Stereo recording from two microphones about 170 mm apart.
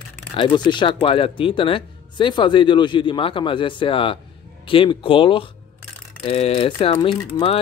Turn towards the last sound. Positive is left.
turn(degrees=30)  # may be behind; listen again after turning